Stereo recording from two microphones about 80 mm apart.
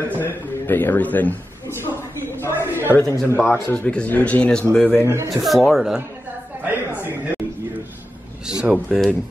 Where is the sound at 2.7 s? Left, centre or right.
Right.